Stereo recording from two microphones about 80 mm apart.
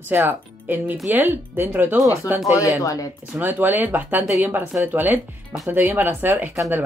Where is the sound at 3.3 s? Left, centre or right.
Right.